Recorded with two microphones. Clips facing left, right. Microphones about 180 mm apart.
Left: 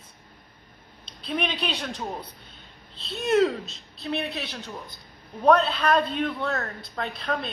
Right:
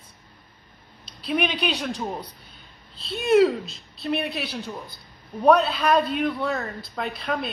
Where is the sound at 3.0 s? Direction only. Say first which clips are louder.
Right 4 dB; 5° right (ahead or behind).